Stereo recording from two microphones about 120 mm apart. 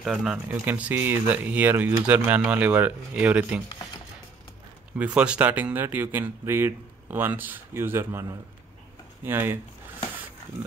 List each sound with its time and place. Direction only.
0.0 s speech: 5° right (ahead or behind)
4.9 s speech: 10° right (ahead or behind)